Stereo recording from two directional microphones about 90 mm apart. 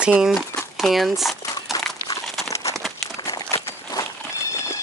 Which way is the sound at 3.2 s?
35° left (ahead or behind).